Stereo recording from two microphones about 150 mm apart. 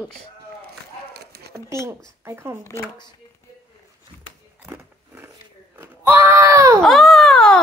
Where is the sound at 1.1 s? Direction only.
90° right.